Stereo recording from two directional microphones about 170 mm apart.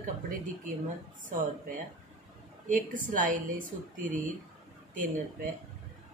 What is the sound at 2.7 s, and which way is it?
Speech, 50° right (ahead or behind).